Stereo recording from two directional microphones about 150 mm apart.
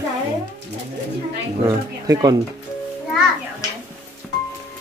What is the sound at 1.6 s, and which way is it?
Speech, 20° right (ahead or behind).